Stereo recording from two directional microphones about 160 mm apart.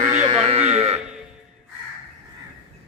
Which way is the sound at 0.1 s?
40° right (ahead or behind).